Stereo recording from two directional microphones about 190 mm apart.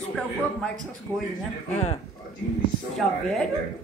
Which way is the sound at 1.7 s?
35° left (ahead or behind).